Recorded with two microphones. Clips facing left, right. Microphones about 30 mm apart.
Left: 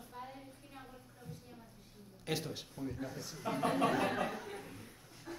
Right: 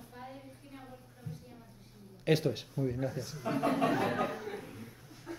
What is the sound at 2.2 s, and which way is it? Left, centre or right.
Speech, right.